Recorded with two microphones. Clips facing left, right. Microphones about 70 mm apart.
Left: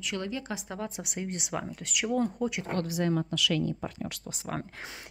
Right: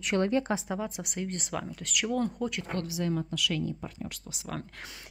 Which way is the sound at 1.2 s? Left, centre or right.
Centre.